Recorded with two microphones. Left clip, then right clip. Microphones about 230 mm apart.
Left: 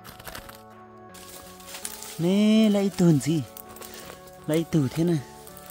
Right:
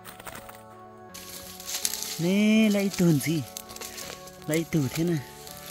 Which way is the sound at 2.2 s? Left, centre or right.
Centre.